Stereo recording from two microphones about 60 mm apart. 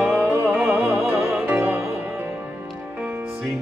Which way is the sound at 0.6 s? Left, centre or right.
Right.